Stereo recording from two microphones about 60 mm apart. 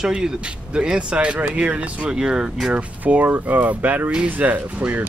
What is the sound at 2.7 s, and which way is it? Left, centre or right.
Speech, right.